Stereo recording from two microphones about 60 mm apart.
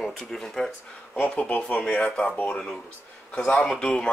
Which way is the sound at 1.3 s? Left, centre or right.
Left.